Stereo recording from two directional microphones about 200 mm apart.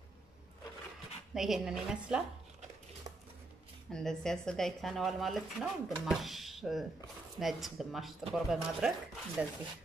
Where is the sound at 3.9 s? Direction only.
5° left (ahead or behind).